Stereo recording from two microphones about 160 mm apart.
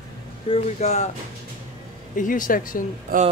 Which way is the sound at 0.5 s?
45° left (ahead or behind).